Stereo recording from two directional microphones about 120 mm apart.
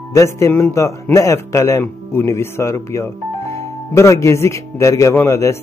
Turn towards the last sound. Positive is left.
turn(degrees=25)  # may be behind; listen again after turning